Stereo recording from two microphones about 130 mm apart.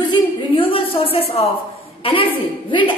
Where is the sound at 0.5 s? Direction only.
45° left (ahead or behind).